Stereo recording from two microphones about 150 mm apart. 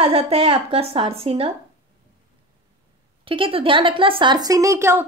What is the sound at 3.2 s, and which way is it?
A woman's voice, 35° right (ahead or behind).